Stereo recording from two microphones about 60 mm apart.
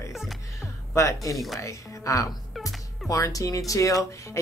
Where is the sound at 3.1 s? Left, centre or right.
Left.